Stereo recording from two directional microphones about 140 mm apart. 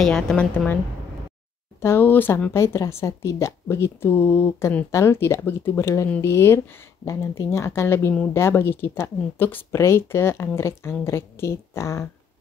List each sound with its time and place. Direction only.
0.0 s a woman's voice: 5° left (ahead or behind)
1.8 s speech: 15° left (ahead or behind)